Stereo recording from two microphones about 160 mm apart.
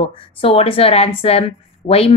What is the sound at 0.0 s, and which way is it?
A woman's voice, 35° left (ahead or behind).